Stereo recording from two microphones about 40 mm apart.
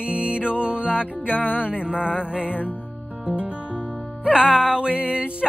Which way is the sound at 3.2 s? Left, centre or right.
Right.